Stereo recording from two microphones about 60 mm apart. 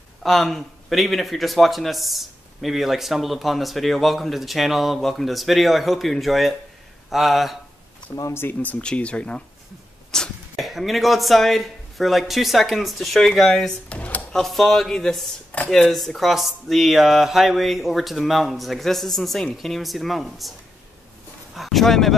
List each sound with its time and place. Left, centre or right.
0.2 s a man's voice: centre
8.3 s speech: left
8.6 s speech: left
10.1 s cough: centre
10.6 s a man's voice: centre
13.9 s a sound: left
14.3 s a man's voice: centre
15.5 s dishes: left
15.9 s a man's voice: centre
21.5 s speech: centre